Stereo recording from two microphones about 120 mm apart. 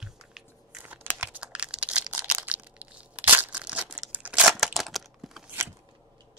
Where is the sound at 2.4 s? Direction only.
10° right (ahead or behind).